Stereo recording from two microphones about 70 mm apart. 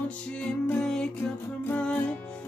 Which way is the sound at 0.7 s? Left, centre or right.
Centre.